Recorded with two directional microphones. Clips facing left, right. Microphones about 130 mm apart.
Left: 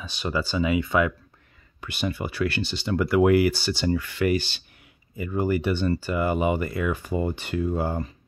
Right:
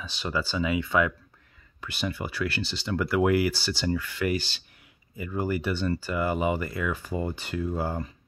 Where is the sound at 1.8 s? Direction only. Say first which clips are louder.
Left 3 dB; 20° left (ahead or behind).